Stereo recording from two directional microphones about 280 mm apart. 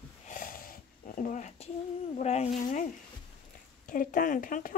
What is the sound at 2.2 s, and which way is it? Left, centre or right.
Speech, left.